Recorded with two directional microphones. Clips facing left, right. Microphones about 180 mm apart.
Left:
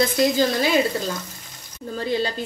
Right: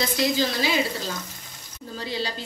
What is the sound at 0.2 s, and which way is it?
Speech, 50° left (ahead or behind).